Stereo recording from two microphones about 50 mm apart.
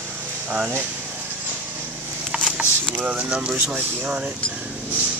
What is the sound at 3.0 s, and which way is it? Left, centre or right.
Speech, right.